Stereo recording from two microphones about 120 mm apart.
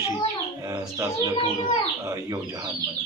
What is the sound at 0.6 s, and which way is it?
Bird, 25° right (ahead or behind).